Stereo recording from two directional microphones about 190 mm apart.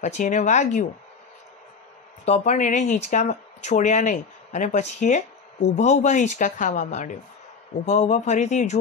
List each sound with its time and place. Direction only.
0.0 s speech: 40° left (ahead or behind)
2.2 s speech: 35° left (ahead or behind)